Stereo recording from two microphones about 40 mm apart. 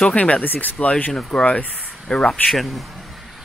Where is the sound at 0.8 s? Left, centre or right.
Left.